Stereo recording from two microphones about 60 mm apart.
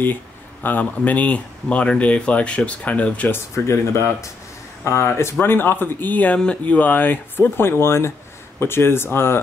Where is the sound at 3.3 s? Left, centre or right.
Left.